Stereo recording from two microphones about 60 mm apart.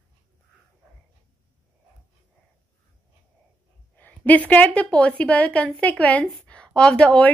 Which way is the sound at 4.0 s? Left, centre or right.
Left.